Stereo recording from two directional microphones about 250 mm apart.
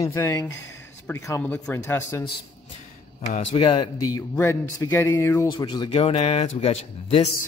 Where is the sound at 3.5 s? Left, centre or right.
Centre.